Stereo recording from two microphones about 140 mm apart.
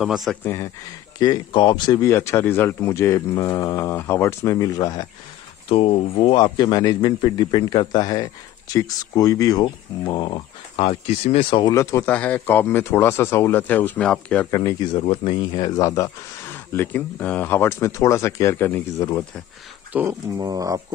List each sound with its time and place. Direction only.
0.0 s speech: centre (ahead or behind)
0.4 s speech: 20° left (ahead or behind)
1.2 s speech: 30° left (ahead or behind)
2.0 s speech: 20° left (ahead or behind)
5.7 s speech: 40° left (ahead or behind)
11.7 s speech: 20° left (ahead or behind)
12.1 s speech: 10° left (ahead or behind)
14.5 s speech: 25° left (ahead or behind)
15.0 s speech: 40° left (ahead or behind); by 19.2 s 15° left (ahead or behind)
19.9 s speech: 15° right (ahead or behind)
20.3 s speech: 25° right (ahead or behind)